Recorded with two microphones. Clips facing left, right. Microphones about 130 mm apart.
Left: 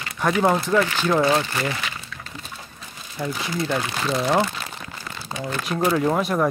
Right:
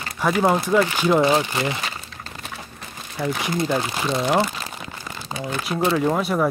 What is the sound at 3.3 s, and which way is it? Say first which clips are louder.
Speech: right 3 dB; 70° right (ahead or behind).